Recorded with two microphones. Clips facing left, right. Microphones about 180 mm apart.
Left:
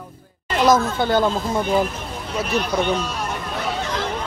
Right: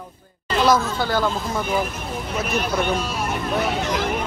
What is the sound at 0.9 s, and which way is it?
Speech, 20° left (ahead or behind).